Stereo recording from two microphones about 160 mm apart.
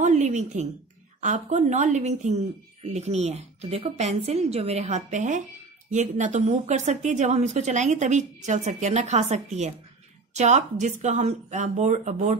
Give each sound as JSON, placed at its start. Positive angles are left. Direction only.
{"t": 0.0, "sound": "a woman's voice", "side_deg": -50}